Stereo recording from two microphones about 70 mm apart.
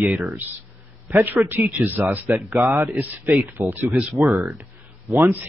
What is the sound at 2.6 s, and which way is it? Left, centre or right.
Speech, right.